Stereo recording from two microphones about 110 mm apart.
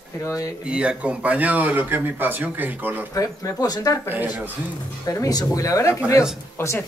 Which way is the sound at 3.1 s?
30° left (ahead or behind).